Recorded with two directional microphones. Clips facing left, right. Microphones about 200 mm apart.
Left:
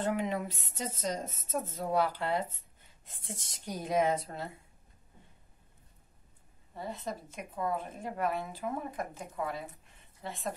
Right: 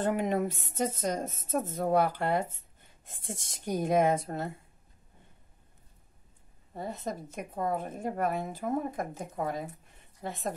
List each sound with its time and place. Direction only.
0.0 s a woman's voice: 45° right (ahead or behind)
6.7 s a woman's voice: 45° right (ahead or behind)